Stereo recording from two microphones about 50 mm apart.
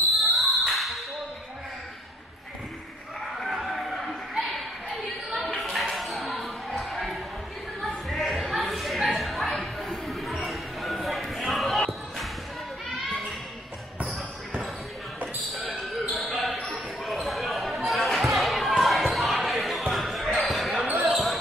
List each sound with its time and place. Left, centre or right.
0.5 s music: centre
3.3 s a sound: centre
6.8 s basketball bounce: centre
7.8 s a sound: centre
15.8 s basketball bounce: centre
20.8 s basketball bounce: right
21.1 s basketball bounce: centre